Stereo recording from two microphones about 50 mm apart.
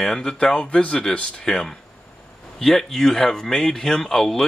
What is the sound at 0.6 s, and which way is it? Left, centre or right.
Speech, left.